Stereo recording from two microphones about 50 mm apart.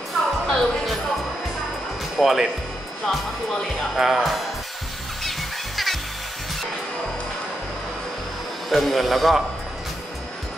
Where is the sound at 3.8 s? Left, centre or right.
Centre.